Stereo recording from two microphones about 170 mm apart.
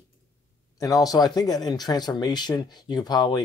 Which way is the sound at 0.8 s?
20° left (ahead or behind).